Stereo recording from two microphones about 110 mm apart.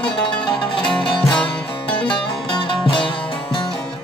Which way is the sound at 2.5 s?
45° left (ahead or behind).